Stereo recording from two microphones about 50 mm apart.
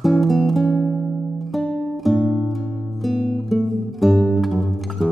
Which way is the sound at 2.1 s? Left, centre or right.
Left.